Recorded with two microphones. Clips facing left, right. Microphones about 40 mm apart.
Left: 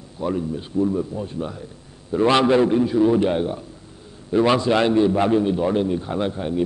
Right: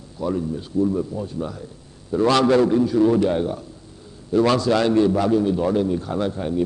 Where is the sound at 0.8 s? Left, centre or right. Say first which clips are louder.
Even; centre.